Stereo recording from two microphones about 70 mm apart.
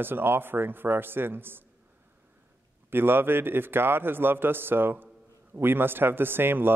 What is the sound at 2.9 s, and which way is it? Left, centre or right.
Speech, right.